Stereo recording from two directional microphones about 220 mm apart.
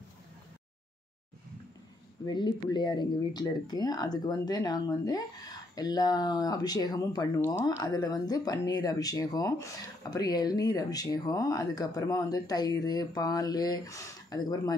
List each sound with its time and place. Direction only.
2.2 s speech: 20° left (ahead or behind)